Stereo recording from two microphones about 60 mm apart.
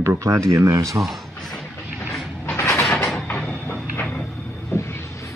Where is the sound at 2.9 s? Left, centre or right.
Centre.